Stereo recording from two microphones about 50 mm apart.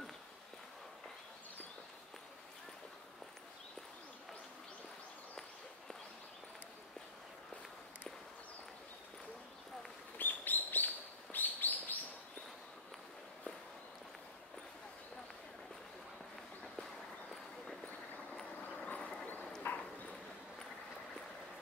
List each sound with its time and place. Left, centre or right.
10.1 s bird: left
17.8 s vehicle: left; by 19.1 s centre
19.7 s clip-clop: left